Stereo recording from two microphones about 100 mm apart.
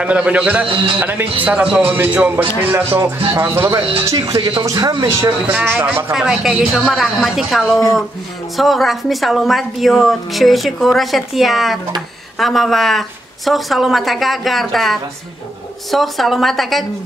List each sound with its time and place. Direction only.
0.0 s speech: 10° right (ahead or behind)
0.7 s a man's voice: 60° right (ahead or behind)
0.9 s speech: 20° right (ahead or behind)
3.7 s a man's voice: 65° right (ahead or behind)
4.1 s speech: 35° right (ahead or behind)
4.4 s speech: 55° right (ahead or behind)
4.6 s speech: 40° right (ahead or behind)
5.8 s speech: 20° right (ahead or behind)
6.1 s a woman's voice: 5° right (ahead or behind)